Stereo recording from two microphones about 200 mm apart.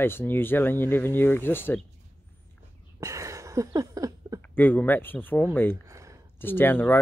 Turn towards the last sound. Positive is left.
turn(degrees=10)  # may be behind; listen again after turning